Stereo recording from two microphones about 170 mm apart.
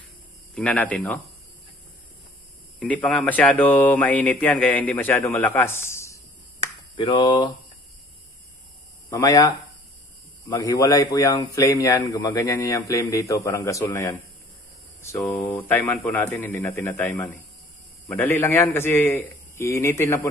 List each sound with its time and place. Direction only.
0.6 s speech: 5° left (ahead or behind)
2.8 s speech: centre (ahead or behind)
7.0 s speech: 30° left (ahead or behind)
9.1 s speech: 20° left (ahead or behind)
10.5 s speech: 20° left (ahead or behind)
15.3 s speech: 10° left (ahead or behind)